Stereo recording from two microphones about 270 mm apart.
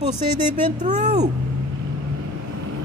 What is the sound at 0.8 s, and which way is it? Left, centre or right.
Speech, right.